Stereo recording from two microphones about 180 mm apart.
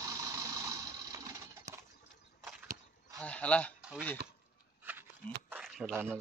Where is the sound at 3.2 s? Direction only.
5° left (ahead or behind).